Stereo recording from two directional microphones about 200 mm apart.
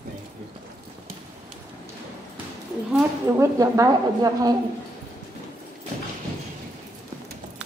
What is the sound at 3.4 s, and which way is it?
Speech, 15° right (ahead or behind).